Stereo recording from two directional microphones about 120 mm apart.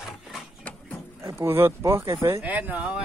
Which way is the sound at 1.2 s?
20° right (ahead or behind).